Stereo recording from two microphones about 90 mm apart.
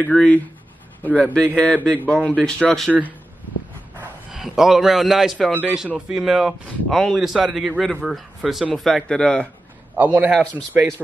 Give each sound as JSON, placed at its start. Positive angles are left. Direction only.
{"t": 0.1, "sound": "speech", "side_deg": 15}
{"t": 4.3, "sound": "a man's voice", "side_deg": -5}
{"t": 5.9, "sound": "a man's voice", "side_deg": -10}
{"t": 9.9, "sound": "speech", "side_deg": -20}